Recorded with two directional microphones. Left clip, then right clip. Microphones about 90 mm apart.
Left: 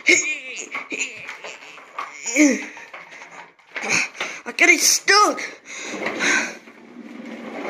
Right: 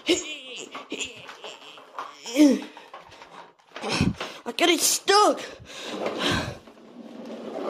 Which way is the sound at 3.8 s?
50° right (ahead or behind).